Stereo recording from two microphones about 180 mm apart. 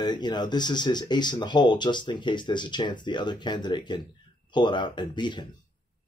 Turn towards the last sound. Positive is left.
turn(degrees=25)  # may be behind; listen again after turning